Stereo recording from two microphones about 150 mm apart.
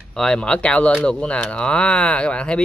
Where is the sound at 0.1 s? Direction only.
5° left (ahead or behind).